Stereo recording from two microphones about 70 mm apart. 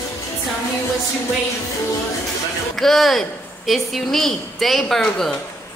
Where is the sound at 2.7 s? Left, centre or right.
Centre.